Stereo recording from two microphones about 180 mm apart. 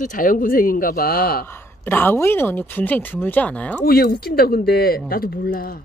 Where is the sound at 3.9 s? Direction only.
55° left (ahead or behind).